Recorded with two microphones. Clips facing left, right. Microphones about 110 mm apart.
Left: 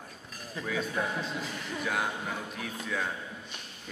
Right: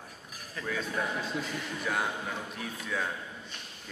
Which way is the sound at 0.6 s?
20° left (ahead or behind).